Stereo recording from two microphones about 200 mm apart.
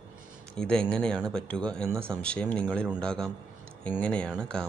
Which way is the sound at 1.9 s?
10° right (ahead or behind).